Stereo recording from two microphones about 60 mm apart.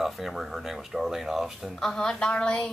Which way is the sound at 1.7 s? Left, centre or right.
Centre.